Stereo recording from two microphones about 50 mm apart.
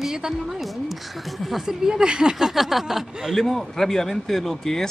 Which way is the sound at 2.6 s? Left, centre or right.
Centre.